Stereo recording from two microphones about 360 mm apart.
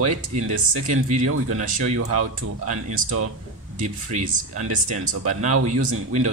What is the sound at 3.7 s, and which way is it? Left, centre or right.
Speech, centre.